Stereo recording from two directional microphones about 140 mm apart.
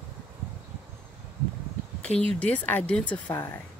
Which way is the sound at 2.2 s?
10° left (ahead or behind).